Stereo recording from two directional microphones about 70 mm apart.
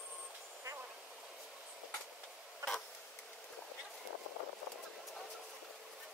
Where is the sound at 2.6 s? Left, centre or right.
Right.